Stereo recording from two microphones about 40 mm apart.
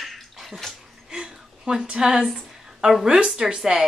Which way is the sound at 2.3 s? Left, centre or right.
Centre.